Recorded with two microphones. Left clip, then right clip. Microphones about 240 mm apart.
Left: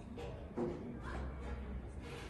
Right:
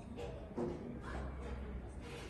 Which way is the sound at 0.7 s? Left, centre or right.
Centre.